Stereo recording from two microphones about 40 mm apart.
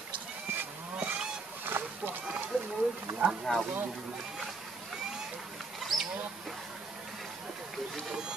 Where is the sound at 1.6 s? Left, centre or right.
Right.